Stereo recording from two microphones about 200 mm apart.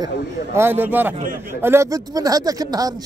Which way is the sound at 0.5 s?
10° right (ahead or behind).